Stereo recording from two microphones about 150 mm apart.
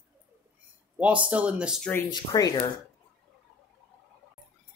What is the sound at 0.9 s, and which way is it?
Speech, 10° right (ahead or behind).